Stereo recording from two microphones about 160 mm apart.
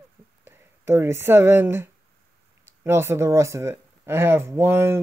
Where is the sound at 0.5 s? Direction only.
15° right (ahead or behind).